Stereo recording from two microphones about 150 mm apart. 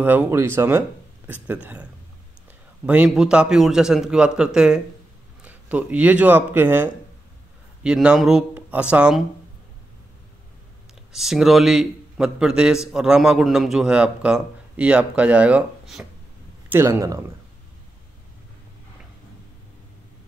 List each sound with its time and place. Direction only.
0.0 s speech: 10° right (ahead or behind)
2.9 s a man's voice: 5° right (ahead or behind)
11.1 s a man's voice: 5° right (ahead or behind)
16.6 s speech: 15° right (ahead or behind)